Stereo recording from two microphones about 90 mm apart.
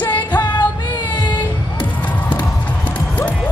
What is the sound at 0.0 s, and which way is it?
Music, 20° left (ahead or behind).